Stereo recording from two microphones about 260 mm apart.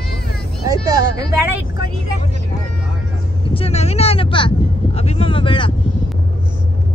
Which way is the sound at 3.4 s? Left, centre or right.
Left.